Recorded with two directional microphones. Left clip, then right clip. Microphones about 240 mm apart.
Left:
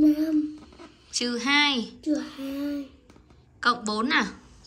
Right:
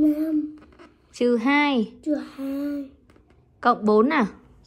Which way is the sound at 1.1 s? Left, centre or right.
Centre.